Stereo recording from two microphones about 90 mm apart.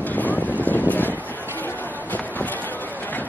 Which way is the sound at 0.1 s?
20° left (ahead or behind).